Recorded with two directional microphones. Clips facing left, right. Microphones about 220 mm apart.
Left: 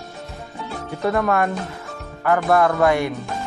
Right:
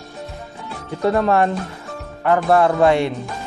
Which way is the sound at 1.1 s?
30° right (ahead or behind).